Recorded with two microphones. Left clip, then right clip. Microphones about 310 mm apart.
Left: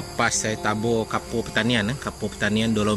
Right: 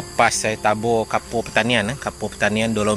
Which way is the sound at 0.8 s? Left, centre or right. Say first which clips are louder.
Right 4 dB; centre.